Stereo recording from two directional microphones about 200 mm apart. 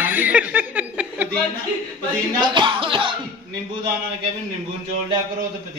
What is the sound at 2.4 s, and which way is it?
Music, 25° right (ahead or behind).